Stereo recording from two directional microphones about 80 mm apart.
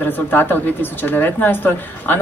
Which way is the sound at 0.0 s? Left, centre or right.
Left.